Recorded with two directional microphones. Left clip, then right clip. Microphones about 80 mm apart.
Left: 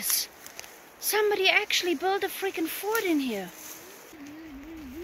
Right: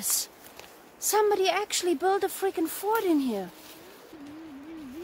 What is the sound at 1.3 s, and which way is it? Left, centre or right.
Speech, right.